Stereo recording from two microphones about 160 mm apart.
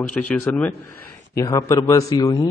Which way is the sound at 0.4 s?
10° left (ahead or behind).